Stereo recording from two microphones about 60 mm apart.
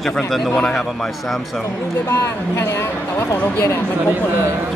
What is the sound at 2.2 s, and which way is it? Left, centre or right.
Speech, left.